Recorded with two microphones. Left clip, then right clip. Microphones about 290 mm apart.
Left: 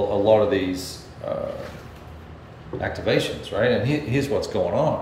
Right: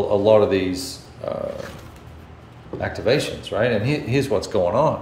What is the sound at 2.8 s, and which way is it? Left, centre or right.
Speech, centre.